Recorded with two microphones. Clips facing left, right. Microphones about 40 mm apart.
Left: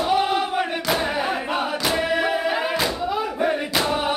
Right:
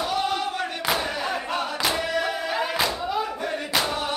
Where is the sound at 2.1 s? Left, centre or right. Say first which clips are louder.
Left 4 dB; centre.